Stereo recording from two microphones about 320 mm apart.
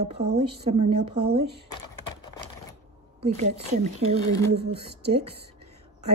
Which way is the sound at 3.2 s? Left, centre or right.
Right.